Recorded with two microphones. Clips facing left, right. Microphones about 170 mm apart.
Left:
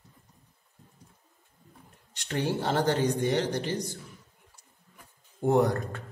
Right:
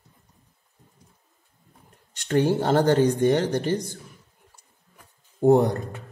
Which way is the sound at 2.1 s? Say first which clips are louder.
Right 8 dB; 50° right (ahead or behind).